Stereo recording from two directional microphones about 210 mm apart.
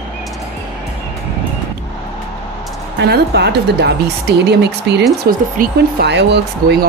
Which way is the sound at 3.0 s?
50° right (ahead or behind).